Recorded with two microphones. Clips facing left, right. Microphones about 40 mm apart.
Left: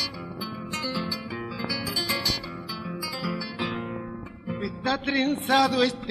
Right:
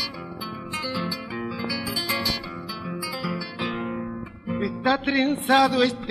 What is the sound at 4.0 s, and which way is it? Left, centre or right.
Music, centre.